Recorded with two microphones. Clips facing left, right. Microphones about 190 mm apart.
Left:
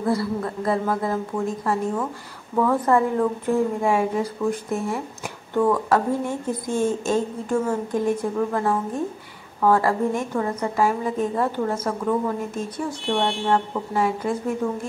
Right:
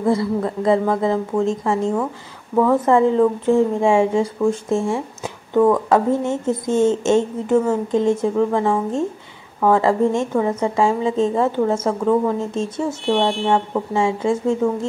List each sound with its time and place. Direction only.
0.0 s speech: 20° right (ahead or behind)